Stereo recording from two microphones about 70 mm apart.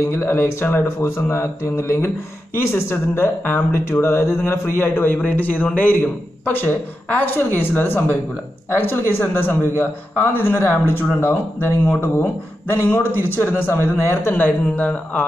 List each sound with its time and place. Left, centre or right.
0.1 s a man's voice: left
14.3 s speech: left